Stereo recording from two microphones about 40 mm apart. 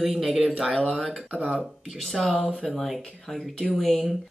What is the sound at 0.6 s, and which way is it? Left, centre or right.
Speech, centre.